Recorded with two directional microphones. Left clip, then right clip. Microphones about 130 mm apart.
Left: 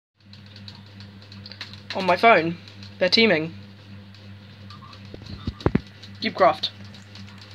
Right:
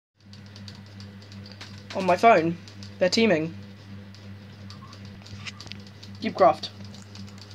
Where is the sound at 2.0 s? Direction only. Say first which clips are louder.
Left 2 dB; 5° right (ahead or behind).